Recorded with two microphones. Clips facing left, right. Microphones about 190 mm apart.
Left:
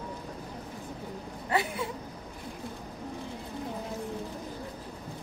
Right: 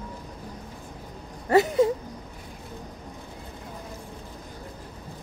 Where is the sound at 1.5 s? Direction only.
40° right (ahead or behind).